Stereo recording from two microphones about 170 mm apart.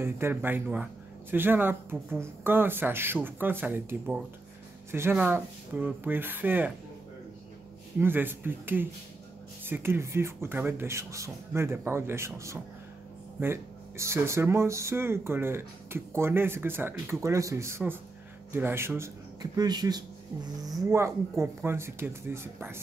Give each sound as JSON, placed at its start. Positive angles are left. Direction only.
{"t": 0.0, "sound": "speech", "side_deg": -15}
{"t": 4.9, "sound": "speech", "side_deg": -10}
{"t": 8.0, "sound": "speech", "side_deg": -10}